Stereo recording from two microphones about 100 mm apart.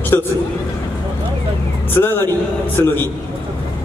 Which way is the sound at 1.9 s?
25° left (ahead or behind).